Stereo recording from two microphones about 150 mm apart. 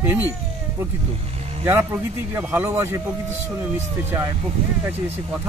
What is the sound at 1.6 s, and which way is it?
Speech, 15° right (ahead or behind).